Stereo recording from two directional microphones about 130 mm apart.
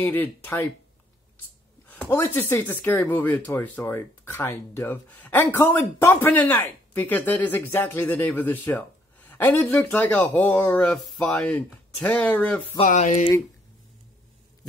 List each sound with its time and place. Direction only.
0.0 s speech: 15° left (ahead or behind)
2.0 s speech: 20° left (ahead or behind)
12.8 s speech: 70° left (ahead or behind)